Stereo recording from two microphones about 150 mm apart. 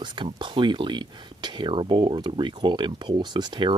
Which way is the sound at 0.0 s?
30° right (ahead or behind).